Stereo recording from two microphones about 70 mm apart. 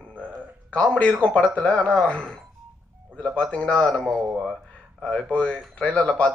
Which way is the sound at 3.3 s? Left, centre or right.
Centre.